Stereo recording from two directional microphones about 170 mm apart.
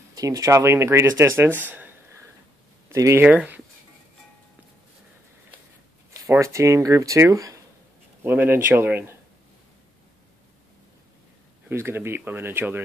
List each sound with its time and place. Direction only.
0.1 s speech: 20° right (ahead or behind)
6.1 s speech: 15° right (ahead or behind)
11.7 s speech: 15° right (ahead or behind)